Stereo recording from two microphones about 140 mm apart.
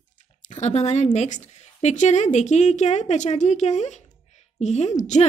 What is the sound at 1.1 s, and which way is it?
A woman's voice, 55° left (ahead or behind).